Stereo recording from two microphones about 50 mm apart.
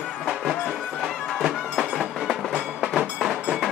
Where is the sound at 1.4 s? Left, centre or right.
Centre.